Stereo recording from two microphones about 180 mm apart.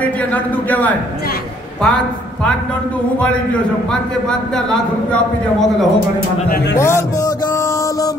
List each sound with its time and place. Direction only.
0.0 s a man's voice: 10° left (ahead or behind)
5.1 s a man's voice: centre (ahead or behind)
6.8 s music: 15° left (ahead or behind)